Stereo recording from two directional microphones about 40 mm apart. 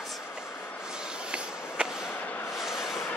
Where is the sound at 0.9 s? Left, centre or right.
Centre.